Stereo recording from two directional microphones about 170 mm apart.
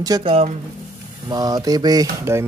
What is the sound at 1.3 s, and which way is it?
Speech, 25° right (ahead or behind).